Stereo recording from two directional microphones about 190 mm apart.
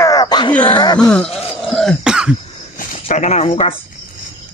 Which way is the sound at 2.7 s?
40° left (ahead or behind).